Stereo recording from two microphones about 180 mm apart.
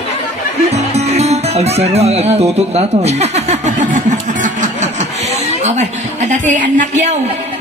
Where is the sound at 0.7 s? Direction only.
35° right (ahead or behind).